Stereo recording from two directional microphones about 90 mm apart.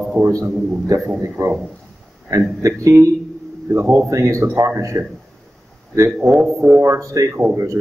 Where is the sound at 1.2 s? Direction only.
35° right (ahead or behind).